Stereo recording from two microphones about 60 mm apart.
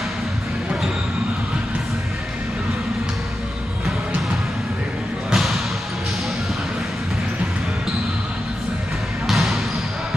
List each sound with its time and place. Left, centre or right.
5.3 s basketball bounce: centre
9.3 s basketball bounce: centre